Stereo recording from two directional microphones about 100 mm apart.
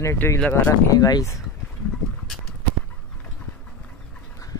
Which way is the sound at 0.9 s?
40° left (ahead or behind).